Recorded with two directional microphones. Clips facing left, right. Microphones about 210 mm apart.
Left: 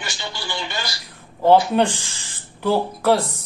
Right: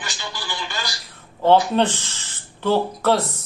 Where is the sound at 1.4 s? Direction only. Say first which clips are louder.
Left 1 dB; 10° left (ahead or behind).